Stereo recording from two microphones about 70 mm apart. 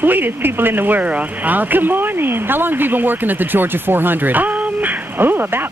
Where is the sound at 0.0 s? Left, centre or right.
Right.